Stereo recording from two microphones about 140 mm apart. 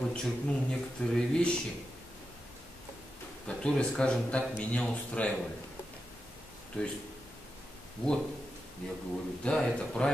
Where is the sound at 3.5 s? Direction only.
5° left (ahead or behind).